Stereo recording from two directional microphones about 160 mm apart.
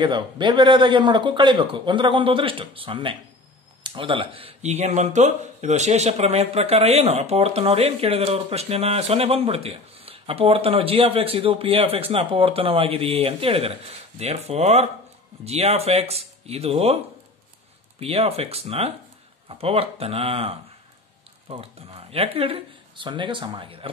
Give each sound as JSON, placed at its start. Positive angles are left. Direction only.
{"t": 0.0, "sound": "speech", "side_deg": -30}